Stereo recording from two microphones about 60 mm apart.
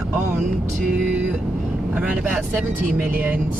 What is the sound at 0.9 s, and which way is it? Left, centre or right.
Speech, centre.